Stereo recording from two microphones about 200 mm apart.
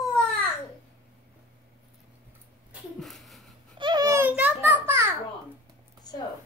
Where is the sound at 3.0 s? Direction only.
Centre (ahead or behind).